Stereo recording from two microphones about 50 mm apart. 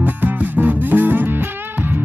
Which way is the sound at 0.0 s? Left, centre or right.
Right.